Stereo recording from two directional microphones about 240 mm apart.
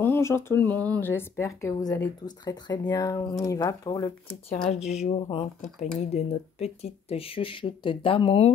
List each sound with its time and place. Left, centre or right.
0.0 s speech: centre
4.6 s speech: left